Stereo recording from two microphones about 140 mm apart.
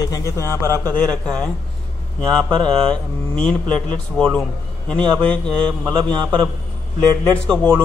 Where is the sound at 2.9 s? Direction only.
5° left (ahead or behind).